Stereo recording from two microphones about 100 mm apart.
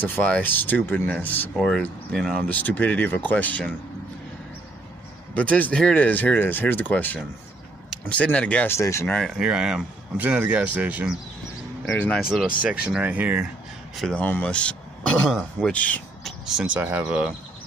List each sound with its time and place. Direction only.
0.0 s speech: 15° left (ahead or behind)
1.6 s speech: 5° left (ahead or behind)
2.5 s speech: 15° left (ahead or behind)
5.3 s speech: 15° left (ahead or behind)
8.6 s speech: 30° left (ahead or behind)
9.0 s speech: 10° left (ahead or behind)
9.3 s speech: 10° right (ahead or behind)
12.1 s speech: centre (ahead or behind)
14.1 s speech: 15° left (ahead or behind)
16.3 s a sound: 5° right (ahead or behind)
16.8 s speech: 15° right (ahead or behind)